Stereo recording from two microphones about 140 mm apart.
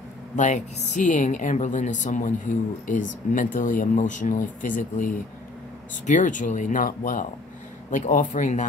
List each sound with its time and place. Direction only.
0.4 s a woman's voice: 55° left (ahead or behind); by 7.2 s 75° left (ahead or behind)
7.9 s a woman's voice: 65° left (ahead or behind)